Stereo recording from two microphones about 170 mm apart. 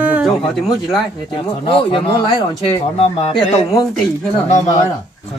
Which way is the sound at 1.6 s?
30° left (ahead or behind).